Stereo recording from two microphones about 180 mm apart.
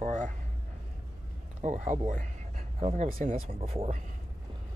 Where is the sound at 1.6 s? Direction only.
45° right (ahead or behind).